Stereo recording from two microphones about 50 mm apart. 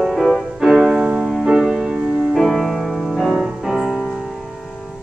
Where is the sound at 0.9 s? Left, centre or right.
Centre.